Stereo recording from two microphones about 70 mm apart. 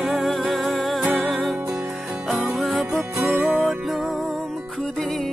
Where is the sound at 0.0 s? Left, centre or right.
Centre.